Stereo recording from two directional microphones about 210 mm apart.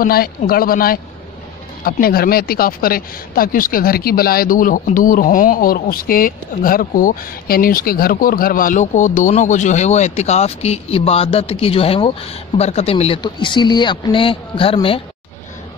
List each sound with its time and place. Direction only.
0.0 s speech: 45° left (ahead or behind); by 15.0 s 25° left (ahead or behind)